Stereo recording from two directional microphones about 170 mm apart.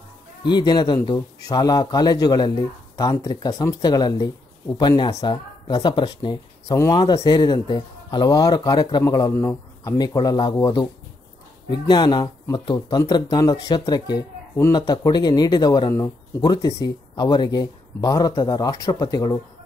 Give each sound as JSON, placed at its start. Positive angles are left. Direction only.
{"t": 0.4, "sound": "speech", "side_deg": 25}